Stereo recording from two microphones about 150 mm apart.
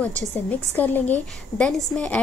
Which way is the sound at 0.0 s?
10° left (ahead or behind).